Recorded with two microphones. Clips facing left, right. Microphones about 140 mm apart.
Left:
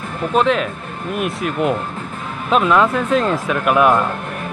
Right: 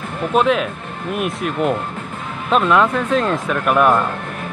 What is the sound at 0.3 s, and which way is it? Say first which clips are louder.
Speech: even; centre (ahead or behind).